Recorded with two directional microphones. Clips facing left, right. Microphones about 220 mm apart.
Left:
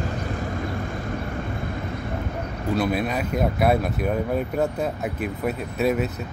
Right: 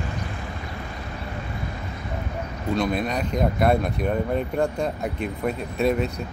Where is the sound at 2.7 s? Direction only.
5° left (ahead or behind).